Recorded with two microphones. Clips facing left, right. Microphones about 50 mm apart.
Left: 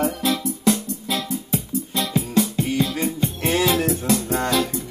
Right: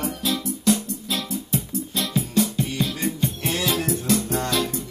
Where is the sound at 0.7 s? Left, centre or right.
Left.